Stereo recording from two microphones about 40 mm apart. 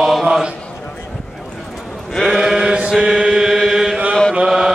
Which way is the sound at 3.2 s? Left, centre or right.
Centre.